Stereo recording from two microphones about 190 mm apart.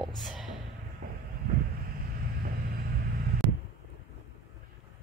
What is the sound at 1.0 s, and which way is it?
Vehicle, 40° right (ahead or behind).